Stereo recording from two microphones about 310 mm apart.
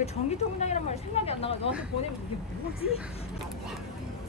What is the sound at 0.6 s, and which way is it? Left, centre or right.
Speech, left.